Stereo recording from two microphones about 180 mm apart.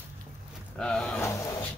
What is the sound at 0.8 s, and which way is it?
Speech, 5° left (ahead or behind).